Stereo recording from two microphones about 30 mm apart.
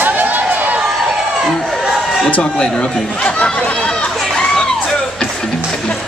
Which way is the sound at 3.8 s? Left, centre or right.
Left.